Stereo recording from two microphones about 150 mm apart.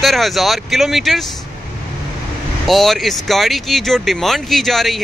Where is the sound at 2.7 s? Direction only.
Centre (ahead or behind).